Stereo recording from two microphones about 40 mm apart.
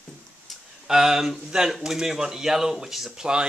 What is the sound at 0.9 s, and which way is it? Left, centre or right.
Speech, centre.